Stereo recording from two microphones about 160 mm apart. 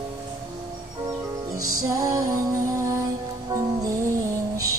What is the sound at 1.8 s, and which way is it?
Music, 20° right (ahead or behind).